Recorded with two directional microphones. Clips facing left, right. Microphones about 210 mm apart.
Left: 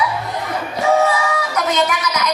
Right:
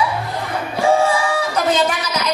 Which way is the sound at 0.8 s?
30° right (ahead or behind).